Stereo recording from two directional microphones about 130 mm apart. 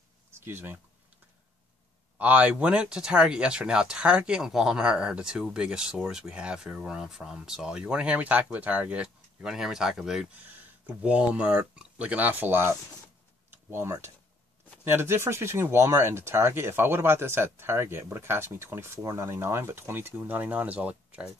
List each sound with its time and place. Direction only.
0.3 s speech: 15° right (ahead or behind)
2.1 s speech: 10° right (ahead or behind)